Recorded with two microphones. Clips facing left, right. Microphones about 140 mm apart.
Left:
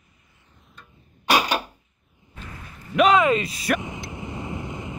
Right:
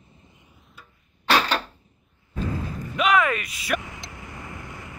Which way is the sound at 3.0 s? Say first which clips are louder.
Left 4 dB; 25° left (ahead or behind).